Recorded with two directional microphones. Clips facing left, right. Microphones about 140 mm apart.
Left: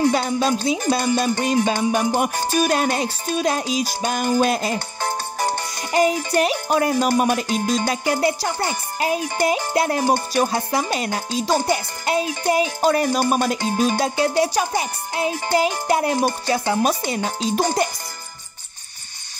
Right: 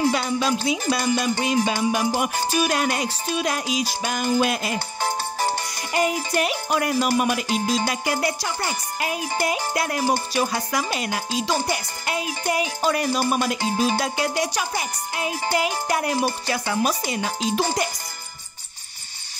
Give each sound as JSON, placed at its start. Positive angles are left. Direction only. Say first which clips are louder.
{"t": 0.1, "sound": "music", "louder": "left 3 dB", "side_deg": 40}
{"t": 5.9, "sound": "music", "louder": "left 4 dB", "side_deg": 35}
{"t": 8.2, "sound": "speech", "louder": "left 5 dB", "side_deg": 25}
{"t": 9.5, "sound": "music", "louder": "left 5 dB", "side_deg": 30}
{"t": 10.0, "sound": "speech", "louder": "left 3 dB", "side_deg": 45}
{"t": 11.7, "sound": "music", "louder": "left 6 dB", "side_deg": 30}
{"t": 12.8, "sound": "music", "louder": "left 3 dB", "side_deg": 45}
{"t": 16.2, "sound": "speech", "louder": "left 3 dB", "side_deg": 45}
{"t": 16.5, "sound": "speech", "louder": "left 4 dB", "side_deg": 25}
{"t": 16.8, "sound": "music", "louder": "left 3 dB", "side_deg": 40}